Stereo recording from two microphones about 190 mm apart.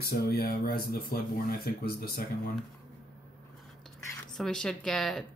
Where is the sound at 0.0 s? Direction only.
55° left (ahead or behind).